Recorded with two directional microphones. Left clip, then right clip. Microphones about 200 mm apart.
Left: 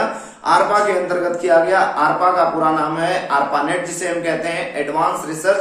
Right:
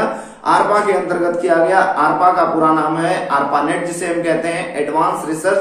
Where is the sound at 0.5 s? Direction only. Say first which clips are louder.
Right 1 dB; 10° left (ahead or behind).